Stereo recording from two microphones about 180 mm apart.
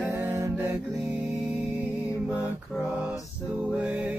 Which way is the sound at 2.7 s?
5° right (ahead or behind).